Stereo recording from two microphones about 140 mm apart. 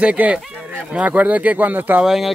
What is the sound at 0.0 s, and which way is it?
Speech, 10° right (ahead or behind).